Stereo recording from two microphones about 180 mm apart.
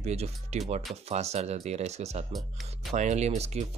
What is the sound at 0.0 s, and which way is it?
Speech, 35° right (ahead or behind).